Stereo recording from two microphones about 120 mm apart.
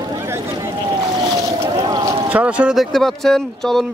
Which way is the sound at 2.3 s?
10° right (ahead or behind).